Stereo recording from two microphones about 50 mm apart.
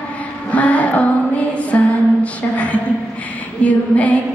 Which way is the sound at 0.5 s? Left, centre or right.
Left.